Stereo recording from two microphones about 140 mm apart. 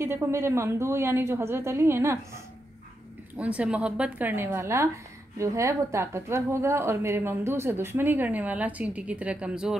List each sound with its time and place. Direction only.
0.0 s a woman's voice: 20° right (ahead or behind)